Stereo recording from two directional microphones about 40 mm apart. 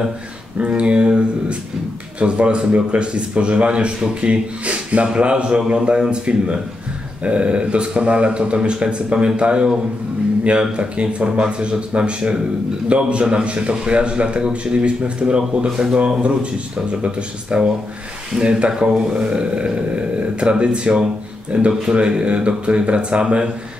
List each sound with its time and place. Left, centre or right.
0.6 s a man's voice: right
18.7 s a man's voice: right